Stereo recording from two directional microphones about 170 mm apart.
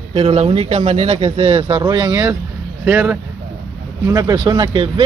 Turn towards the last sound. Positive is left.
turn(degrees=-25)  # may be behind; listen again after turning